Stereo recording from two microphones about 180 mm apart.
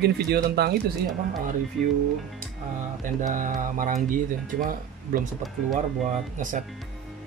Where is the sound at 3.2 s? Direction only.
45° right (ahead or behind).